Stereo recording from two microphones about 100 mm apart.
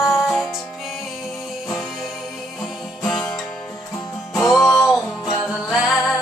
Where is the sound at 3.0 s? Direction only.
5° left (ahead or behind).